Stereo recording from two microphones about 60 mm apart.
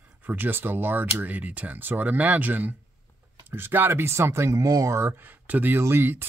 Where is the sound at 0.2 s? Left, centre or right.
Right.